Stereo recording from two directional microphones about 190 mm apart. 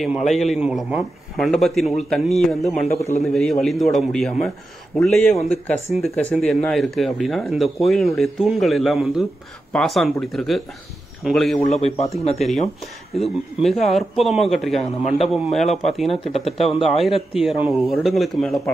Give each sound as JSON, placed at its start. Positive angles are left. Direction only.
{"t": 0.0, "sound": "a man's voice", "side_deg": 0}
{"t": 3.0, "sound": "speech", "side_deg": 35}
{"t": 3.3, "sound": "a man's voice", "side_deg": 0}
{"t": 11.7, "sound": "speech", "side_deg": 35}
{"t": 13.1, "sound": "a man's voice", "side_deg": 0}
{"t": 16.3, "sound": "speech", "side_deg": 30}
{"t": 17.3, "sound": "a man's voice", "side_deg": -5}